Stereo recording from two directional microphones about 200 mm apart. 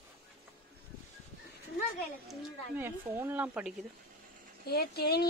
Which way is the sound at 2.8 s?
10° right (ahead or behind).